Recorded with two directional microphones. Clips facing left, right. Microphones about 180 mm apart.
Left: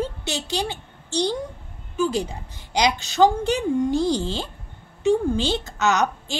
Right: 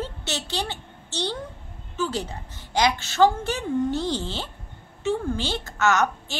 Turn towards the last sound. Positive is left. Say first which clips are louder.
# left 1 dB
turn(degrees=15)  # may be behind; listen again after turning